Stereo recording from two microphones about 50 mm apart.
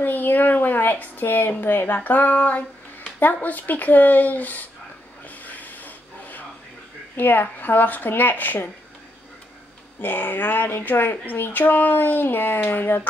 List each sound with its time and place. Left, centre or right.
0.0 s speech: left
5.3 s a sound: left
7.2 s speech: left
10.0 s speech: left